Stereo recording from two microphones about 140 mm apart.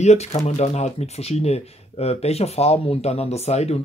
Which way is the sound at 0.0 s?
55° left (ahead or behind).